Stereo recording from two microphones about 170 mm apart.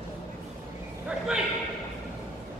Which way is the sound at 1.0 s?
5° right (ahead or behind).